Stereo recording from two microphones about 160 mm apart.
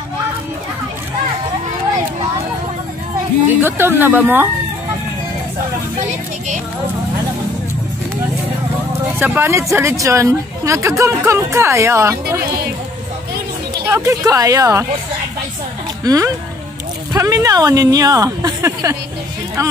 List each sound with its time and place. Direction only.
3.4 s speech: 15° right (ahead or behind)
9.2 s speech: 15° right (ahead or behind)
13.7 s speech: 20° right (ahead or behind)
16.0 s speech: 20° right (ahead or behind)